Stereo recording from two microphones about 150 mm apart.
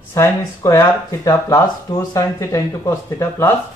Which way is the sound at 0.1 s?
20° left (ahead or behind).